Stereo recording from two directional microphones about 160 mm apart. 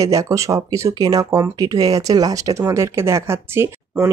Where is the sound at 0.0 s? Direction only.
20° right (ahead or behind).